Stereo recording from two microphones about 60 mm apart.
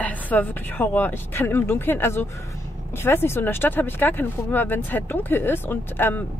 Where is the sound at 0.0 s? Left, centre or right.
Left.